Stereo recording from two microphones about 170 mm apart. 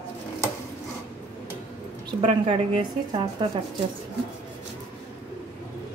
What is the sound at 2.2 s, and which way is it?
A woman's voice, 30° right (ahead or behind).